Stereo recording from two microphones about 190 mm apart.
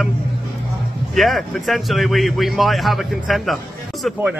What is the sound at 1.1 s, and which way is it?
Speech, centre (ahead or behind).